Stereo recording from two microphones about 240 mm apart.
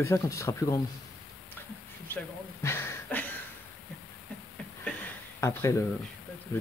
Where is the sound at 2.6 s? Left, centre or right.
Centre.